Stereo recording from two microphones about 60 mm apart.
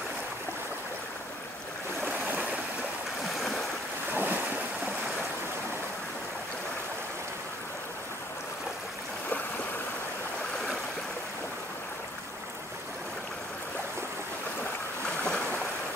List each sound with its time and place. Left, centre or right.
2.0 s stream: right
3.3 s stream: centre
4.1 s waves: right
15.2 s boat: left